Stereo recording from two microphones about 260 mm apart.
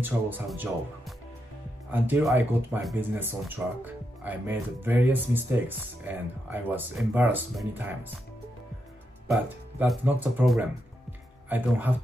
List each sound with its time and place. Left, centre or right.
0.0 s speech: centre
9.3 s speech: centre